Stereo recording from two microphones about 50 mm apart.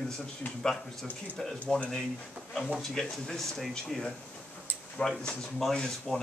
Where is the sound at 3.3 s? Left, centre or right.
Centre.